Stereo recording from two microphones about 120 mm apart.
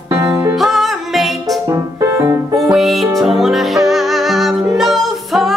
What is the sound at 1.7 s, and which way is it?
Music, 25° right (ahead or behind).